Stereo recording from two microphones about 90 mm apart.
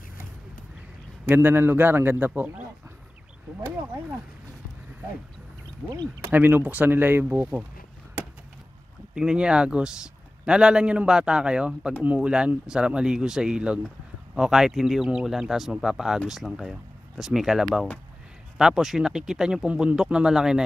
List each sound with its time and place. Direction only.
1.2 s a man's voice: 25° right (ahead or behind)
6.2 s a man's voice: 20° right (ahead or behind)
9.1 s speech: 10° right (ahead or behind)